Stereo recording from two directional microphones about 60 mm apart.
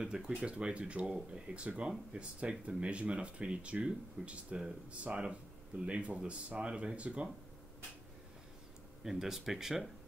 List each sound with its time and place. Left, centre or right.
0.0 s speech: centre
9.0 s speech: centre